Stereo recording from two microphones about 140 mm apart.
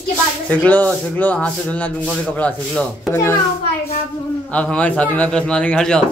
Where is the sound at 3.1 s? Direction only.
20° left (ahead or behind).